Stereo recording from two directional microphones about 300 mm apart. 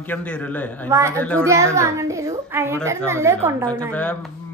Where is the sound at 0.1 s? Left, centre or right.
Centre.